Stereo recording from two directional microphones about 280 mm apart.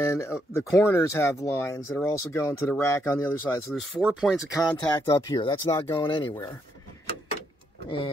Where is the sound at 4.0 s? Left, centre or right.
Centre.